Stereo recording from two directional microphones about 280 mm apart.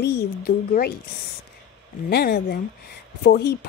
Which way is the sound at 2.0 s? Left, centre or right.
Left.